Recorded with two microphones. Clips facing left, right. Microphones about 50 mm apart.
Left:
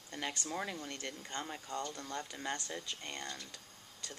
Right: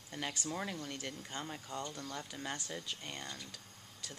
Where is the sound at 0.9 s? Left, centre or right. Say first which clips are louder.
Even; centre.